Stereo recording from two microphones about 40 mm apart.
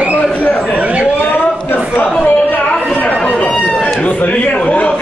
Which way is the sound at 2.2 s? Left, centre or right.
Left.